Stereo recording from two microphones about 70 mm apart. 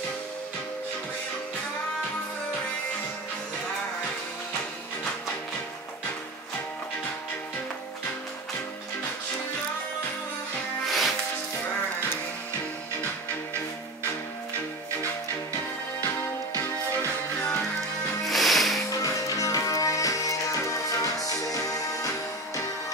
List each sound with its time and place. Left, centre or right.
10.9 s music: centre
16.0 s music: left
18.2 s music: centre
18.9 s music: left